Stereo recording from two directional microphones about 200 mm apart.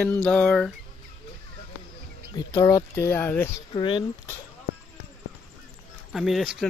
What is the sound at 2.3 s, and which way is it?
Speech, 15° left (ahead or behind).